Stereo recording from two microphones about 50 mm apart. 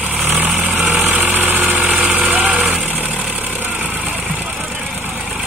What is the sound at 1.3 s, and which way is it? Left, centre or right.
Vehicle, right.